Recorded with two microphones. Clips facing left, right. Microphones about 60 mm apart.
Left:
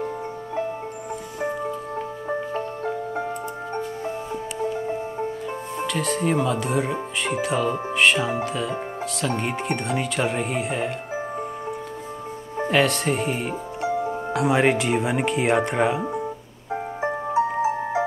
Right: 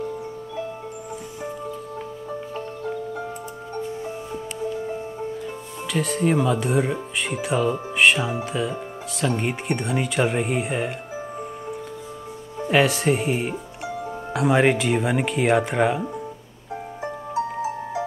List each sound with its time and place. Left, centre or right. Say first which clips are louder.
5.9 s speech: right 2 dB; centre
9.4 s speech: even; centre
12.6 s speech: right 2 dB; centre
13.8 s music: left 7 dB; left
14.3 s speech: right 1 dB; centre
16.7 s music: left 5 dB; left